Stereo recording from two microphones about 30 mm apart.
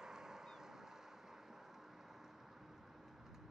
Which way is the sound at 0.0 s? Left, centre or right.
Centre.